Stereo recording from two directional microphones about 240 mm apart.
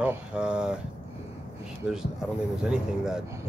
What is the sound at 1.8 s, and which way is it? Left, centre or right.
Speech, centre.